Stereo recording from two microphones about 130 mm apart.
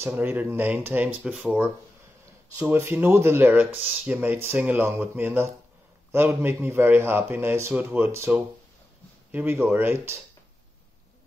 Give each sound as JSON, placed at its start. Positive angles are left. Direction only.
{"t": 0.0, "sound": "speech", "side_deg": -15}